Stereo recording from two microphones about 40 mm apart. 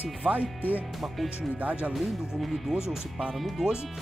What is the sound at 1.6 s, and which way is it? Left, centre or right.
Speech, right.